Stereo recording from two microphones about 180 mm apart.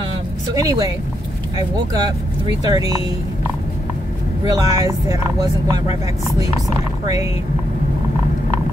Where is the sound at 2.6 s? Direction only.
20° right (ahead or behind).